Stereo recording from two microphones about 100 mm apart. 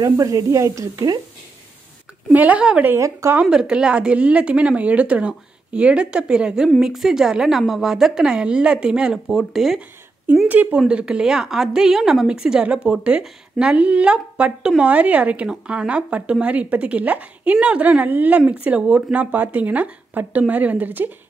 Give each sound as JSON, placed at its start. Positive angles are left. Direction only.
{"t": 0.0, "sound": "speech", "side_deg": -35}
{"t": 2.3, "sound": "a woman's voice", "side_deg": -15}
{"t": 3.0, "sound": "speech", "side_deg": -30}
{"t": 3.3, "sound": "a woman's voice", "side_deg": -10}
{"t": 9.8, "sound": "a sound", "side_deg": -15}
{"t": 10.5, "sound": "a woman's voice", "side_deg": -15}